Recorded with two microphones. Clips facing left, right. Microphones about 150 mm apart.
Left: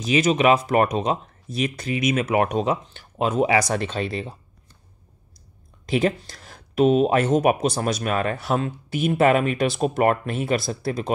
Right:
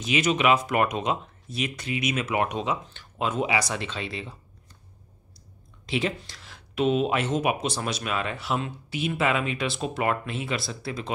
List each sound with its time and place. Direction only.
0.0 s speech: 35° left (ahead or behind)
5.9 s speech: 45° left (ahead or behind)